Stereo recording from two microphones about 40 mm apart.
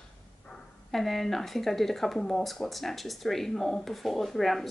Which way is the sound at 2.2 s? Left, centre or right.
Centre.